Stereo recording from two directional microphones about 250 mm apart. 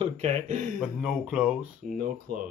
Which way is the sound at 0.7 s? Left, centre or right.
Centre.